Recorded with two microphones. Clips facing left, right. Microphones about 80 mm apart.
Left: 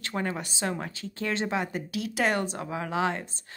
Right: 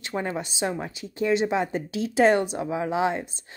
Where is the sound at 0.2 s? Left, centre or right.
Right.